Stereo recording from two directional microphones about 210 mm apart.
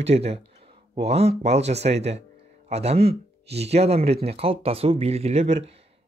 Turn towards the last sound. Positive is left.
turn(degrees=-30)  # may be behind; listen again after turning